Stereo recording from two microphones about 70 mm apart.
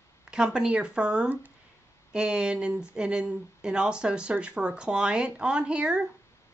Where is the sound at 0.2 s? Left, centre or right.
Centre.